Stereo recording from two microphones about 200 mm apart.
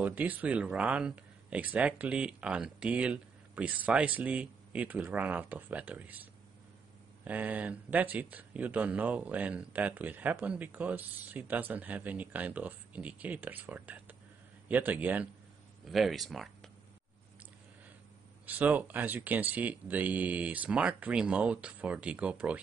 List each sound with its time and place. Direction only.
0.0 s speech: 10° right (ahead or behind)
7.2 s speech: 10° right (ahead or behind)
18.4 s speech: 10° right (ahead or behind)